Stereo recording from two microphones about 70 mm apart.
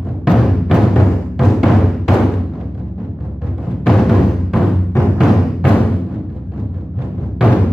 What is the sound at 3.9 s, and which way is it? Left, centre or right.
Music, centre.